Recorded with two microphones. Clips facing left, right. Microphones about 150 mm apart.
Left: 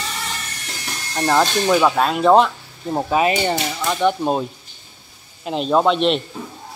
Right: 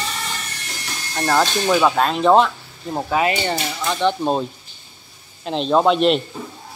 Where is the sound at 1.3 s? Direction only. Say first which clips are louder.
Left 1 dB; centre (ahead or behind).